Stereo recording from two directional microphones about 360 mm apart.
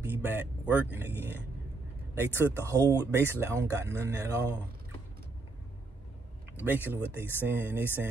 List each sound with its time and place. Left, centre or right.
0.0 s a sound: centre
2.1 s speech: centre
6.6 s speech: centre